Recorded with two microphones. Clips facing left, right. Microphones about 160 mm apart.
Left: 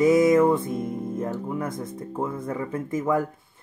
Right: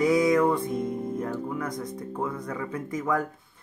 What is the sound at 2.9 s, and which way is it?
Music, 25° left (ahead or behind).